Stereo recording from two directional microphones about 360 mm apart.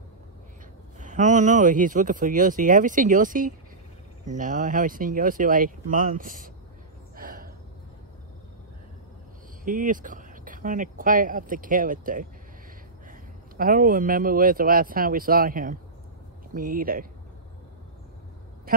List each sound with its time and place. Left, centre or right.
0.9 s speech: centre
7.2 s gasp: right
9.7 s speech: right
13.6 s speech: right